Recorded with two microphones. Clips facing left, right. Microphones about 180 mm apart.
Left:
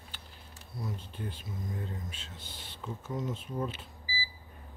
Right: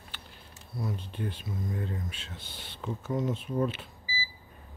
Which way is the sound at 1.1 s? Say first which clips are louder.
Right 5 dB; 70° right (ahead or behind).